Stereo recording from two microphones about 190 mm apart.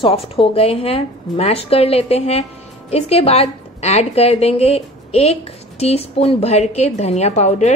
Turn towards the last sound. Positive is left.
turn(degrees=35)  # may be behind; listen again after turning